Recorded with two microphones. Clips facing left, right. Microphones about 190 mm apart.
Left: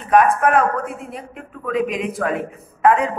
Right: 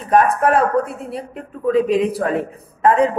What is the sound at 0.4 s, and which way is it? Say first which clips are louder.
A man's voice: right 2 dB; 35° right (ahead or behind).